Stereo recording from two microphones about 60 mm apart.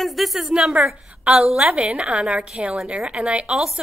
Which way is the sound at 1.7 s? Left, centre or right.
Centre.